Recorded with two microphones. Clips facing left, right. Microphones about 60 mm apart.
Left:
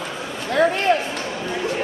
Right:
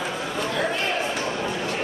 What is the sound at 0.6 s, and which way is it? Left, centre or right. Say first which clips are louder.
Speech: left 10 dB; left.